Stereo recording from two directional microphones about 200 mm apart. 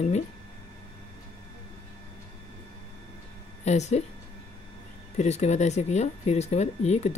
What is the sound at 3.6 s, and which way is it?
Speech, 35° left (ahead or behind).